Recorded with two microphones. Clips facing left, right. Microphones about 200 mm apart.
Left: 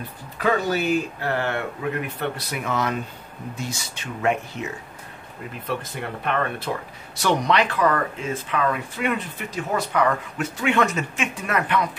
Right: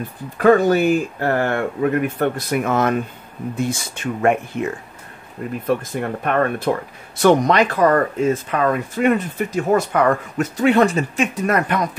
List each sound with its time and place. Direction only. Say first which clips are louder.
0.4 s speech: right 9 dB; 50° right (ahead or behind)